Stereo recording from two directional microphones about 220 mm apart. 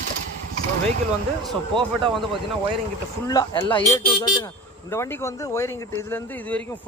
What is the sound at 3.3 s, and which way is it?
Speech, 15° left (ahead or behind).